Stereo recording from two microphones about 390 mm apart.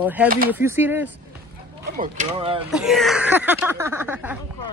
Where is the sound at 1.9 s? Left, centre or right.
Centre.